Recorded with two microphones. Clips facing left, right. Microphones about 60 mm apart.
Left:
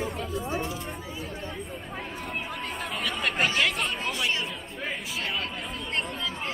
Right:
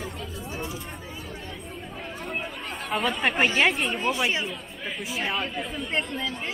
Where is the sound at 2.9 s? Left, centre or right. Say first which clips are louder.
Right 6 dB; centre.